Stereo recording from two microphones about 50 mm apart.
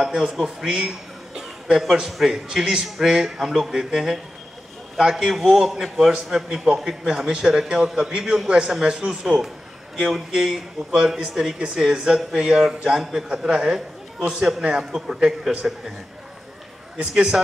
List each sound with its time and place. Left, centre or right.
0.0 s a man's voice: centre
17.0 s a man's voice: centre